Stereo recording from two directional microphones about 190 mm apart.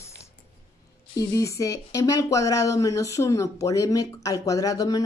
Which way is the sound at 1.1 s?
20° left (ahead or behind).